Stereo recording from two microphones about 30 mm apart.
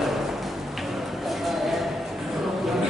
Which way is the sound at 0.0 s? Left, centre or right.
Centre.